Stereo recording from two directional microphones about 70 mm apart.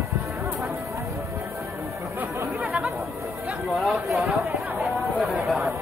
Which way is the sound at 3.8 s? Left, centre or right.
Centre.